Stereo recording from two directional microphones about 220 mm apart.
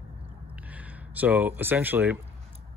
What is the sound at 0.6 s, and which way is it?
Speech, 5° right (ahead or behind).